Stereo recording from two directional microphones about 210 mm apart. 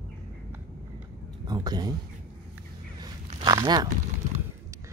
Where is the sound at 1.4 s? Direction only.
20° right (ahead or behind).